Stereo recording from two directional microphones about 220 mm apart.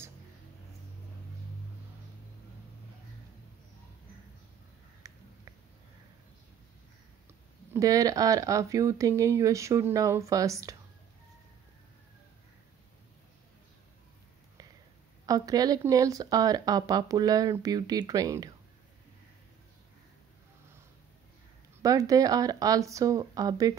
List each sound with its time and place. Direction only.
5.0 s a sound: 15° right (ahead or behind)
7.7 s speech: 15° right (ahead or behind)
15.2 s speech: 15° right (ahead or behind)
21.8 s speech: 15° right (ahead or behind)